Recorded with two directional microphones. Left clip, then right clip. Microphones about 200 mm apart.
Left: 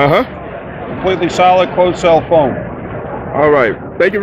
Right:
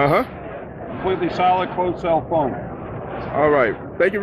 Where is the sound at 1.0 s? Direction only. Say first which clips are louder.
Left 8 dB; 55° left (ahead or behind).